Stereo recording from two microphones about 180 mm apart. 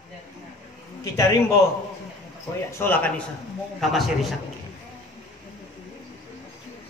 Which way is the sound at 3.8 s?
Centre (ahead or behind).